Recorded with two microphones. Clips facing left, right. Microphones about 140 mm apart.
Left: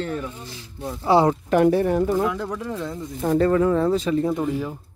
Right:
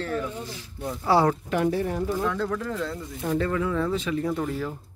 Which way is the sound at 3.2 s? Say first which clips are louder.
Left 7 dB; 40° left (ahead or behind).